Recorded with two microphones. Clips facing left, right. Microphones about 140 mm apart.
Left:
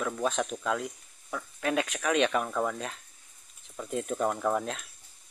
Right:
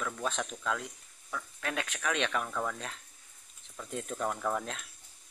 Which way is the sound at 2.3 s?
25° left (ahead or behind).